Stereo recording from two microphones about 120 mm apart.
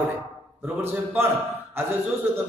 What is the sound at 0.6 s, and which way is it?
A man's voice, 20° right (ahead or behind).